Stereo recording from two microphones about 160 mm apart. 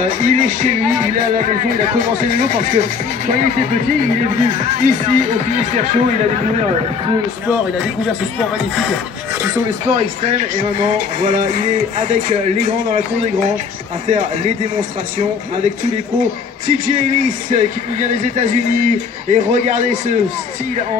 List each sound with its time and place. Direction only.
0.2 s speech: 50° right (ahead or behind)
7.4 s a man's voice: 10° right (ahead or behind)
9.9 s speech: 45° right (ahead or behind)
14.0 s speech: 45° right (ahead or behind)
18.4 s speech: 50° right (ahead or behind)